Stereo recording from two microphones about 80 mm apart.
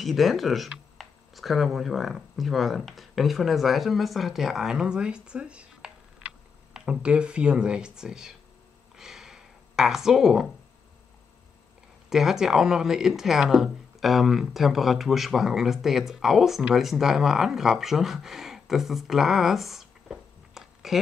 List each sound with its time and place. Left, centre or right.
0.0 s speech: centre
8.9 s a sound: centre
12.1 s speech: centre